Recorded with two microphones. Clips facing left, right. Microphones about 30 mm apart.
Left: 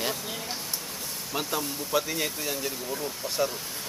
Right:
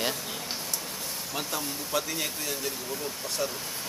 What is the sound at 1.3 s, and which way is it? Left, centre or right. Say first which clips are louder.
Speech: left 4 dB; centre.